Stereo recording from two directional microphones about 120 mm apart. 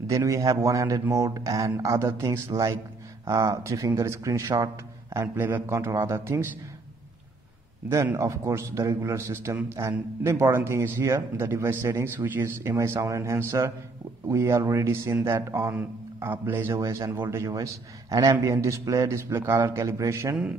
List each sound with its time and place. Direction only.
0.0 s a man's voice: 25° right (ahead or behind)
7.9 s a man's voice: 25° right (ahead or behind)